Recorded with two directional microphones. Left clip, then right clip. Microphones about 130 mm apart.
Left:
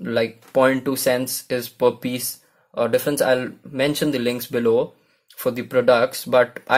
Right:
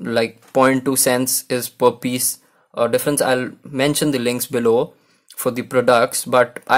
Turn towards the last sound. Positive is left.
turn(degrees=-25)  # may be behind; listen again after turning